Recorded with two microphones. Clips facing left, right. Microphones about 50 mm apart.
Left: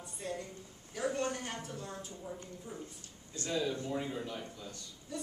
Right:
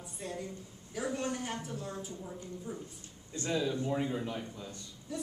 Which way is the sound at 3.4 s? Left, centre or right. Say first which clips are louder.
Right 3 dB; centre.